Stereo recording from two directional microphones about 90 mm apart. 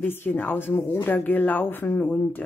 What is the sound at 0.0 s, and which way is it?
Speech, 25° left (ahead or behind).